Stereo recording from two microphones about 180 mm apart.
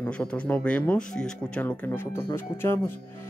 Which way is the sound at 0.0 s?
5° left (ahead or behind).